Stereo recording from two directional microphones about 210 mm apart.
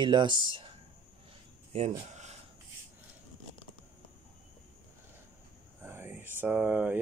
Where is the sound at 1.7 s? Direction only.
30° right (ahead or behind).